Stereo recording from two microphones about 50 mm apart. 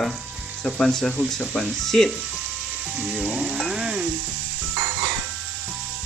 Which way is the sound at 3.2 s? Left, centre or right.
Centre.